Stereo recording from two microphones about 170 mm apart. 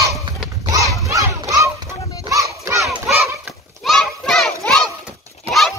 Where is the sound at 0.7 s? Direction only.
20° right (ahead or behind).